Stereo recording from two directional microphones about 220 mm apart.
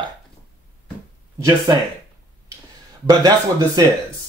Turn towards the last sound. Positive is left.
turn(degrees=-20)  # may be behind; listen again after turning